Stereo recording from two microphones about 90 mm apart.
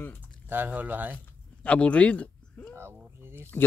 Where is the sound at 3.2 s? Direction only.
25° right (ahead or behind).